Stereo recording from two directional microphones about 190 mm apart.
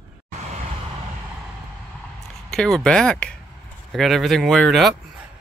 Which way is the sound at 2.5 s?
5° left (ahead or behind).